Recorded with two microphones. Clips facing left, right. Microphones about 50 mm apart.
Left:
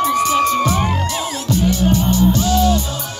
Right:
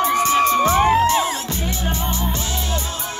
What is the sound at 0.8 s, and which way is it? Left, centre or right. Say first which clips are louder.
Music: right 6 dB; right.